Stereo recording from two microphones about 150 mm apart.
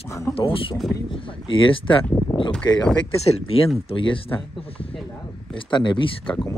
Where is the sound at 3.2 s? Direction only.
45° left (ahead or behind).